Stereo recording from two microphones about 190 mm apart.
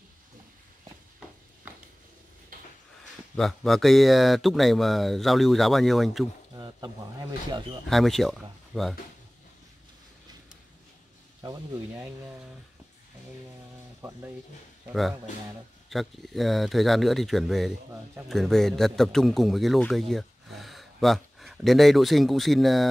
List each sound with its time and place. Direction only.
3.3 s speech: centre (ahead or behind)
6.5 s a sound: 25° right (ahead or behind)
7.9 s speech: centre (ahead or behind)
11.4 s speech: 15° right (ahead or behind)
14.0 s a sound: 10° right (ahead or behind)
14.9 s a man's voice: centre (ahead or behind)